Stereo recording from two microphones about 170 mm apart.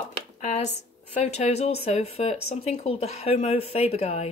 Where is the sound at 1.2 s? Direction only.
40° left (ahead or behind).